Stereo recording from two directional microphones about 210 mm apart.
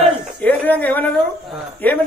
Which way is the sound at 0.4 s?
5° left (ahead or behind).